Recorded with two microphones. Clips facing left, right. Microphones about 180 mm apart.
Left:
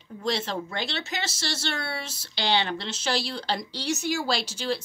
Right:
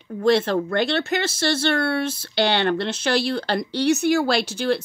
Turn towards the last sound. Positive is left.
turn(degrees=-60)  # may be behind; listen again after turning